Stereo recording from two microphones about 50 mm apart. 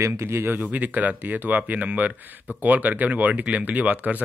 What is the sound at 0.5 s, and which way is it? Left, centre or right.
Speech, right.